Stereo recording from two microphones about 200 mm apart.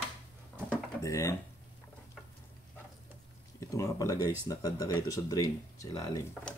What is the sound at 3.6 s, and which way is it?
Speech, 15° left (ahead or behind).